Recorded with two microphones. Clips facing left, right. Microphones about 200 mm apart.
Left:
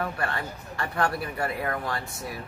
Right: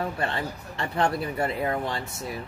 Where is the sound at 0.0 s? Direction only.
25° right (ahead or behind).